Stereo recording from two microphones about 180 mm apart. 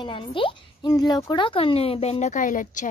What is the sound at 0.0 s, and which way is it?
Speech, 25° left (ahead or behind).